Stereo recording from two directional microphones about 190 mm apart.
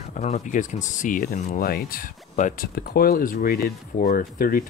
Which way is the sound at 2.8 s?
55° left (ahead or behind).